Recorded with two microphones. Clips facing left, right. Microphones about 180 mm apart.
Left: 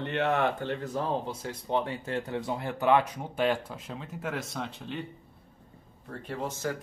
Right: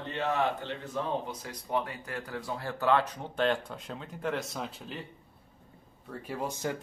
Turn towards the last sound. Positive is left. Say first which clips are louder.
# left 1 dB
turn(degrees=-15)  # may be behind; listen again after turning